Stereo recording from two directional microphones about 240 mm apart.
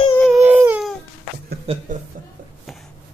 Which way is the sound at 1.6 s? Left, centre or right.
Right.